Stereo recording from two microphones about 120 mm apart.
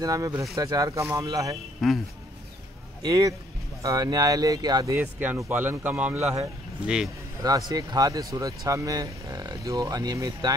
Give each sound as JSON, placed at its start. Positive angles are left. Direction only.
{"t": 0.0, "sound": "speech", "side_deg": -30}
{"t": 1.8, "sound": "speech", "side_deg": 0}
{"t": 3.0, "sound": "speech", "side_deg": -30}
{"t": 4.9, "sound": "speech", "side_deg": -20}
{"t": 7.4, "sound": "speech", "side_deg": -30}